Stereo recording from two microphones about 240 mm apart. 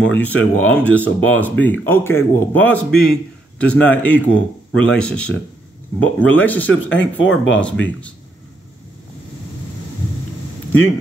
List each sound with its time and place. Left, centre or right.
0.0 s speech: centre
6.7 s speech: left
7.6 s speech: centre